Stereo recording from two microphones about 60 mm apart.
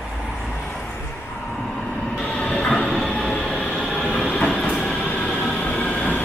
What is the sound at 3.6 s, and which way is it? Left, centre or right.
Train, centre.